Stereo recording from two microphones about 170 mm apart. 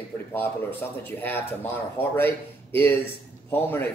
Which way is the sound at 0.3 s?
10° left (ahead or behind).